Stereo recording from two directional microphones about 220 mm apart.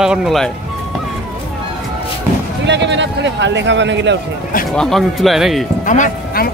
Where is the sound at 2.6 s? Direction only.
50° right (ahead or behind).